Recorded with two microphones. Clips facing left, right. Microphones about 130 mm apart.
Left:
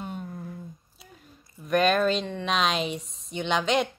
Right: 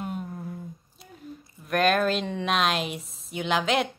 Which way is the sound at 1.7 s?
Centre (ahead or behind).